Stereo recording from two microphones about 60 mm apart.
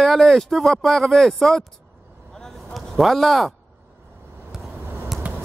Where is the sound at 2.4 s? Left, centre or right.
Centre.